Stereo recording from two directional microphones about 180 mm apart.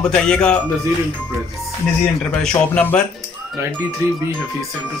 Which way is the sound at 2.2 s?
5° left (ahead or behind).